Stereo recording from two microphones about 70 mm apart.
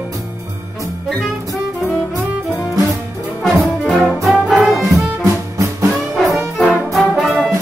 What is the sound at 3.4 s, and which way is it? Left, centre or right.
Brass instrument, centre.